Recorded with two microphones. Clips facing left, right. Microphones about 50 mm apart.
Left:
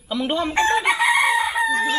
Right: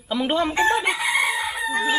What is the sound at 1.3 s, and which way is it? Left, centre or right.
Chicken, centre.